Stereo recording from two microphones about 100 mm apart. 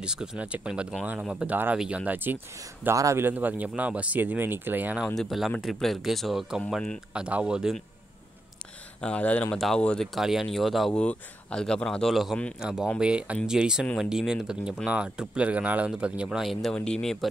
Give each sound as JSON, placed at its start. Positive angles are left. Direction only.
{"t": 0.0, "sound": "speech", "side_deg": -5}
{"t": 3.0, "sound": "speech", "side_deg": -30}
{"t": 3.3, "sound": "speech", "side_deg": -15}
{"t": 5.0, "sound": "speech", "side_deg": 5}
{"t": 7.2, "sound": "speech", "side_deg": -10}
{"t": 9.0, "sound": "speech", "side_deg": 10}
{"t": 16.7, "sound": "speech", "side_deg": 10}